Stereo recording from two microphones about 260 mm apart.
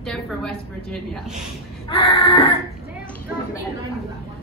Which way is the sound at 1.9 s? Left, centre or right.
Left.